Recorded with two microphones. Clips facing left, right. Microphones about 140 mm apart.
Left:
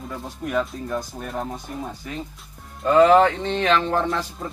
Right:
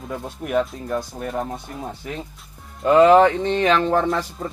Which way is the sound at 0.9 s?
Centre (ahead or behind).